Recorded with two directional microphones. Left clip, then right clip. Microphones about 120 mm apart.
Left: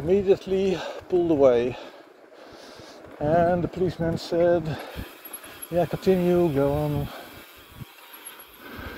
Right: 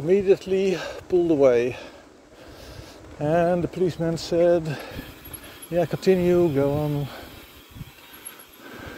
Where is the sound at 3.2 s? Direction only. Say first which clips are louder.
Even; 35° right (ahead or behind).